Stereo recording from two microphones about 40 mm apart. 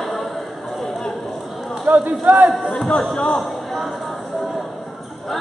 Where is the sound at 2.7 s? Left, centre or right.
Centre.